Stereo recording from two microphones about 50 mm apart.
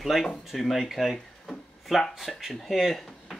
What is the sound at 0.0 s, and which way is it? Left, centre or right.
Speech, centre.